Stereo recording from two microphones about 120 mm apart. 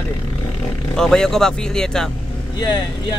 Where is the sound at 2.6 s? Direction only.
35° left (ahead or behind).